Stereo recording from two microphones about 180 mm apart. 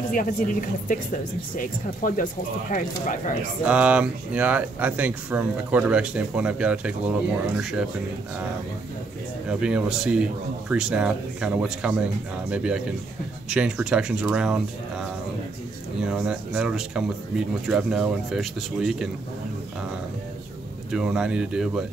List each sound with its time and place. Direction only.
0.1 s a woman's voice: 50° left (ahead or behind)
3.6 s speech: 5° right (ahead or behind)
9.5 s speech: 5° right (ahead or behind)
20.9 s speech: 5° right (ahead or behind)